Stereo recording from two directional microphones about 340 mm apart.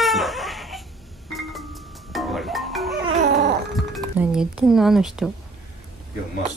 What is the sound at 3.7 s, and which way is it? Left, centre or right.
Speech, centre.